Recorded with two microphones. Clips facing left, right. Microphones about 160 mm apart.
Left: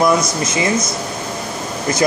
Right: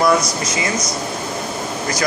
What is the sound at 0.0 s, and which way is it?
Speech, 20° left (ahead or behind).